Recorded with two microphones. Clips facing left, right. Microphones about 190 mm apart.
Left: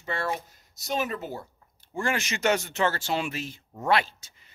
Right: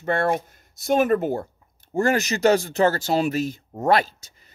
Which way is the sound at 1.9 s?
40° right (ahead or behind).